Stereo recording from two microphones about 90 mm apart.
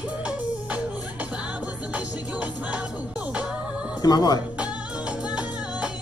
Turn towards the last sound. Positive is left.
turn(degrees=-10)  # may be behind; listen again after turning